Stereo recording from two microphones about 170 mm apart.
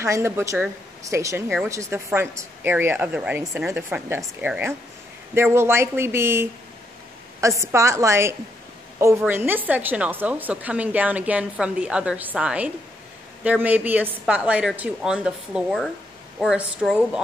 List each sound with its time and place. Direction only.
0.0 s speech: 15° right (ahead or behind)
7.6 s a woman's voice: 15° right (ahead or behind)